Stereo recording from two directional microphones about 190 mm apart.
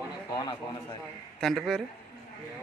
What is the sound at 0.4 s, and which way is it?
Speech, 20° left (ahead or behind).